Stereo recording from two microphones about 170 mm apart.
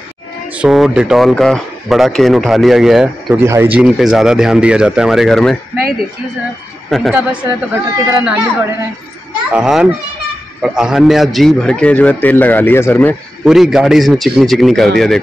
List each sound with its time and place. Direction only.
0.6 s speech: 5° right (ahead or behind)
3.3 s speech: 15° right (ahead or behind)
3.7 s speech: 5° right (ahead or behind)
7.4 s speech: 15° right (ahead or behind)
9.5 s a man's voice: 5° right (ahead or behind); by 13.1 s 15° left (ahead or behind)
13.4 s speech: centre (ahead or behind)